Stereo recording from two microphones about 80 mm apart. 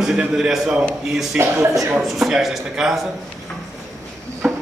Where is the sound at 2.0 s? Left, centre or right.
Centre.